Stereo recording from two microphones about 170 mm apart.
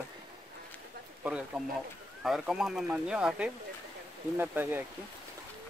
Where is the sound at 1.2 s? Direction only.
5° right (ahead or behind).